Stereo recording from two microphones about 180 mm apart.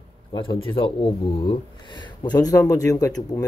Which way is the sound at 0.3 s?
30° left (ahead or behind).